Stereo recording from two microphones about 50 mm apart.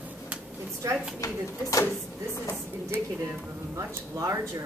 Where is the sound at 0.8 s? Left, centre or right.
Right.